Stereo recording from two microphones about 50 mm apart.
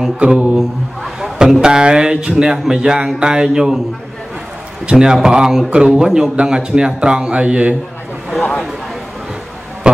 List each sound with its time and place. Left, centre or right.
0.2 s a man's voice: centre
4.8 s a man's voice: centre
9.8 s a sound: centre